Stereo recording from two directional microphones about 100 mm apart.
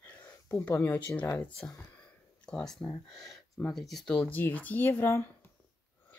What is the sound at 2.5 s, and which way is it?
Speech, 5° left (ahead or behind).